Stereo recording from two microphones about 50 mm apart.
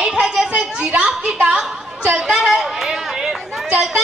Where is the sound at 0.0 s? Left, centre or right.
Centre.